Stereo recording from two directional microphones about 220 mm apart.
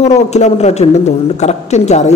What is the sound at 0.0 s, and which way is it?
A woman's voice, 30° left (ahead or behind).